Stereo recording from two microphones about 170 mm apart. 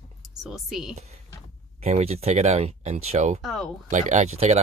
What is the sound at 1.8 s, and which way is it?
Speech, 40° right (ahead or behind).